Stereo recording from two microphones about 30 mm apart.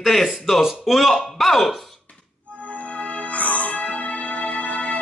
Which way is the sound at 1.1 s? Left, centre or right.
Centre.